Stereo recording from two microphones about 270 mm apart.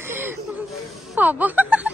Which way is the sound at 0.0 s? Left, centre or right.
Centre.